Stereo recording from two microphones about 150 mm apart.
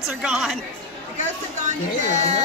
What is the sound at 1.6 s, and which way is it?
Speech, 50° right (ahead or behind).